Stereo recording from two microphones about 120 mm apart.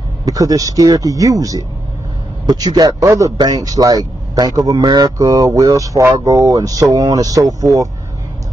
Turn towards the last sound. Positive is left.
turn(degrees=-30)  # may be behind; listen again after turning